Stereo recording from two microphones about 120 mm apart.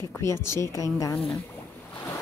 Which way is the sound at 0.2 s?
20° left (ahead or behind).